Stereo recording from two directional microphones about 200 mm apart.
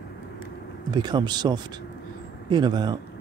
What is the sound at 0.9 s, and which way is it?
Speech, 20° right (ahead or behind).